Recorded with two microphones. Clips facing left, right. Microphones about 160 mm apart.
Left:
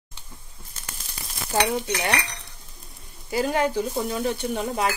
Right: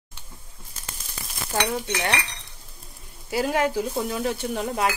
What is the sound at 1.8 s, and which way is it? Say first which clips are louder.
Cutlery: left 1 dB; 10° left (ahead or behind).